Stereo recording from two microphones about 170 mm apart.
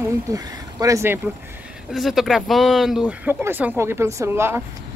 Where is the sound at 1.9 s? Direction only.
Centre (ahead or behind).